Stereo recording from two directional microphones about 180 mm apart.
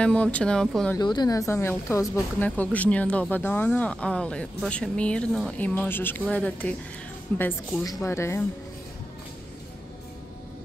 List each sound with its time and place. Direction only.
0.0 s speech: 5° left (ahead or behind)
0.9 s speech: 25° left (ahead or behind)